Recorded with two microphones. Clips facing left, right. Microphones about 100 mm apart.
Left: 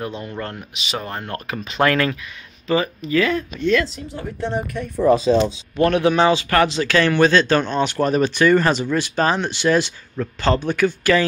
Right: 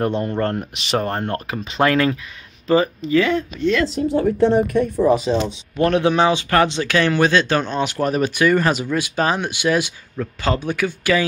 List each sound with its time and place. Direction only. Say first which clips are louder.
0.0 s speech: right 8 dB; 50° right (ahead or behind)
1.3 s speech: right 2 dB; 25° right (ahead or behind)
3.8 s speech: right 11 dB; 55° right (ahead or behind)
5.8 s speech: even; 20° right (ahead or behind); by 11.2 s 5° right (ahead or behind)